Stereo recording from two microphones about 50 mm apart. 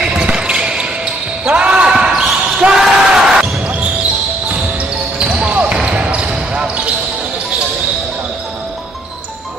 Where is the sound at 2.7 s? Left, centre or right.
Centre.